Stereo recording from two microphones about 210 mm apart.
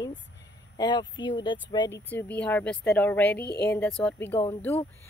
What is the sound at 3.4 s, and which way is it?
Speech, 50° left (ahead or behind).